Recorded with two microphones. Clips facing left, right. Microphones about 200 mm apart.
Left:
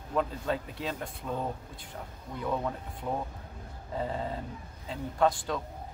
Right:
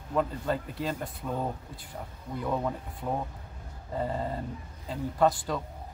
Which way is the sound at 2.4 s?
5° right (ahead or behind).